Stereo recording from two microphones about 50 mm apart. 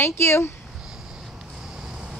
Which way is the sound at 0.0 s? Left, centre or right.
Left.